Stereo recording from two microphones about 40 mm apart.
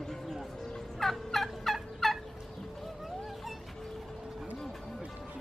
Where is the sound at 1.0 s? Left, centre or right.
Centre.